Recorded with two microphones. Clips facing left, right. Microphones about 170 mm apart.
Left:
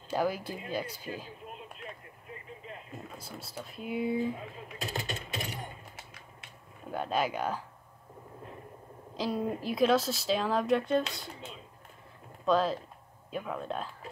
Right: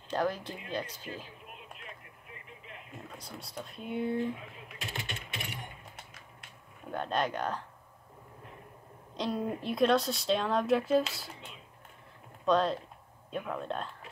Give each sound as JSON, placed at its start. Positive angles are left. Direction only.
{"t": 0.1, "sound": "speech", "side_deg": 10}
{"t": 3.1, "sound": "speech", "side_deg": 5}
{"t": 4.7, "sound": "a sound", "side_deg": 40}
{"t": 5.9, "sound": "typing", "side_deg": 5}
{"t": 9.1, "sound": "speech", "side_deg": 0}
{"t": 12.4, "sound": "speech", "side_deg": 0}